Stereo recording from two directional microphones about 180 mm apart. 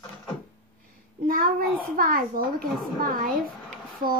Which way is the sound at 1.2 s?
50° right (ahead or behind).